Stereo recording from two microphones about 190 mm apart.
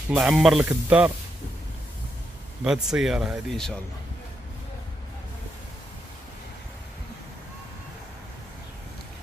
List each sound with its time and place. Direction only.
0.1 s speech: centre (ahead or behind)
2.6 s speech: 5° right (ahead or behind)